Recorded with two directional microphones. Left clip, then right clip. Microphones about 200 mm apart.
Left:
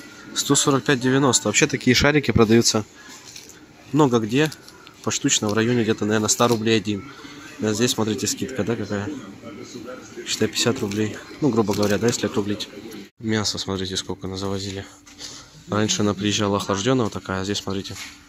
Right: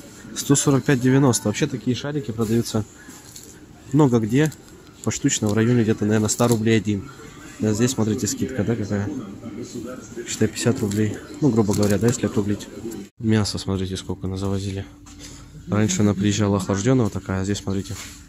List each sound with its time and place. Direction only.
0.3 s speech: 5° right (ahead or behind)
1.9 s speech: 35° left (ahead or behind)
2.6 s speech: 10° left (ahead or behind)
3.9 s speech: centre (ahead or behind)
10.2 s speech: 5° right (ahead or behind)